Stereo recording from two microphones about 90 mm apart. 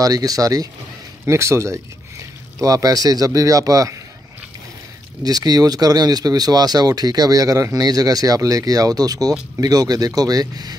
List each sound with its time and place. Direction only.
0.0 s speech: 45° right (ahead or behind)
1.2 s speech: 30° right (ahead or behind)
5.2 s speech: 45° right (ahead or behind)